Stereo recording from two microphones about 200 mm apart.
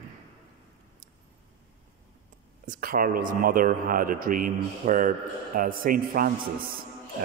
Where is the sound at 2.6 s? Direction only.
45° right (ahead or behind).